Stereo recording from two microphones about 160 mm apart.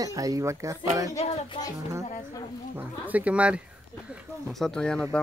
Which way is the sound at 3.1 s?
10° right (ahead or behind).